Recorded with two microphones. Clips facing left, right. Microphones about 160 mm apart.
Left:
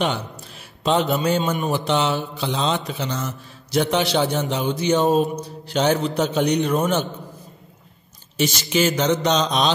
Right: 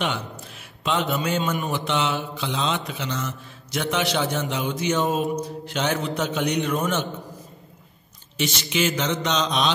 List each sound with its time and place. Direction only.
0.0 s a sound: 35° left (ahead or behind)
1.5 s mantra: 35° left (ahead or behind)
8.4 s mantra: 40° left (ahead or behind)